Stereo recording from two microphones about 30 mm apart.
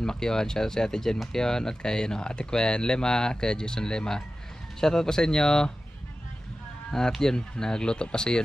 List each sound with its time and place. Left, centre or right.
0.0 s speech: left
7.1 s speech: centre